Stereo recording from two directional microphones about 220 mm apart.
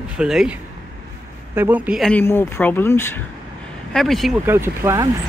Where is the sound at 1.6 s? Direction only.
5° right (ahead or behind).